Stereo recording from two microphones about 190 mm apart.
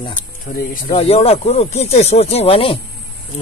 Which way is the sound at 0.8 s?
30° left (ahead or behind).